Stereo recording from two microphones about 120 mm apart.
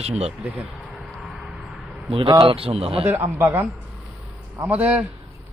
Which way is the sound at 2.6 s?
55° right (ahead or behind).